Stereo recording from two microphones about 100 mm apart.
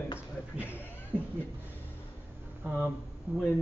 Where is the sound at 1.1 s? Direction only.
15° left (ahead or behind).